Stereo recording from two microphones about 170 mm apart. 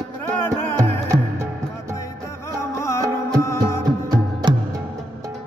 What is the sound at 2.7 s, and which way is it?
Music, 15° left (ahead or behind).